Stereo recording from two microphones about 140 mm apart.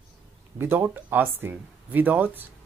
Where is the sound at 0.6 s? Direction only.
15° right (ahead or behind).